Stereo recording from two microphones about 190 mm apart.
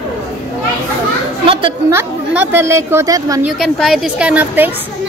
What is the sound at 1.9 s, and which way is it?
A woman's voice, 10° right (ahead or behind).